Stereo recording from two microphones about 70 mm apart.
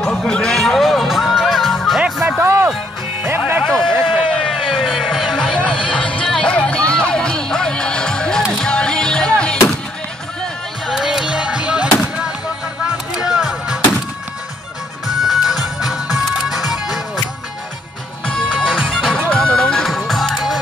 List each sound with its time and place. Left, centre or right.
0.1 s music: centre
2.0 s music: centre
2.4 s music: right
3.3 s music: right
4.5 s music: centre
5.4 s music: centre
10.9 s music: centre
11.2 s music: centre
15.0 s music: centre
18.2 s music: centre
19.2 s music: centre
19.6 s music: centre